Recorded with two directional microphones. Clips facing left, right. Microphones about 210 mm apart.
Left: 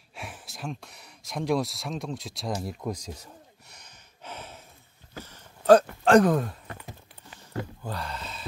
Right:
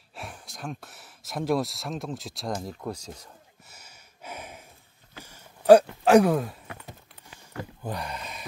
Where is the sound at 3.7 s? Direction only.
10° right (ahead or behind).